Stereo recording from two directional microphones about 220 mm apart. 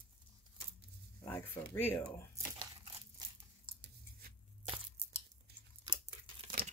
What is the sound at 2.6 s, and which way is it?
Crumpling, 25° right (ahead or behind).